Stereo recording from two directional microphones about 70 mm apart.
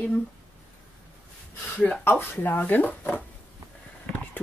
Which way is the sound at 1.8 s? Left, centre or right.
Left.